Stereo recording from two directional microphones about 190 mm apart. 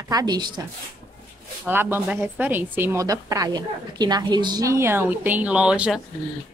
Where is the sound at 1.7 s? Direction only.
10° right (ahead or behind).